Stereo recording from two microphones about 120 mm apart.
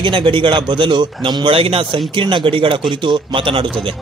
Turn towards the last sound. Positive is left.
turn(degrees=-45)  # may be behind; listen again after turning